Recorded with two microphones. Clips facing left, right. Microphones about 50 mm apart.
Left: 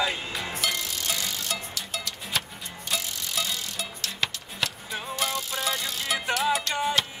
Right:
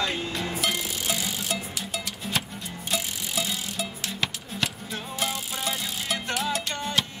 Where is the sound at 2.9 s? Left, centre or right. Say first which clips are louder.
Right 1 dB; centre.